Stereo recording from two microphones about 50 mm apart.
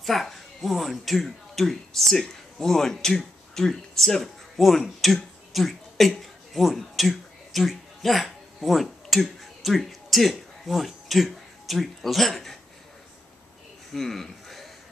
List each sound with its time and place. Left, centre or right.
0.0 s speech: centre
13.9 s speech: centre